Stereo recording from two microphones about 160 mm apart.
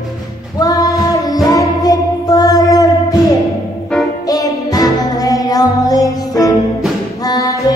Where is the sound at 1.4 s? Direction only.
25° left (ahead or behind).